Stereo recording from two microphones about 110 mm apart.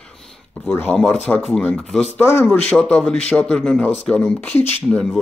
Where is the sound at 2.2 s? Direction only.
25° left (ahead or behind).